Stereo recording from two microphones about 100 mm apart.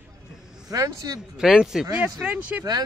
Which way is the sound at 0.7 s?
35° right (ahead or behind).